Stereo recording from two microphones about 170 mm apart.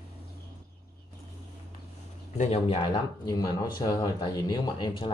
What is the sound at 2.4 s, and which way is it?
Speech, 35° left (ahead or behind).